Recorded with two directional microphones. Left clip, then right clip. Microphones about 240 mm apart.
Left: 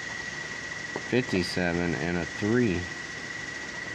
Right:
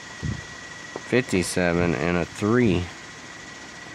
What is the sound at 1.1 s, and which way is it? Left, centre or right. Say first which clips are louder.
Speech: right 5 dB; right.